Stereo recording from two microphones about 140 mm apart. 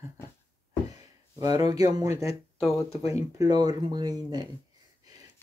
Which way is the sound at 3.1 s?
25° right (ahead or behind).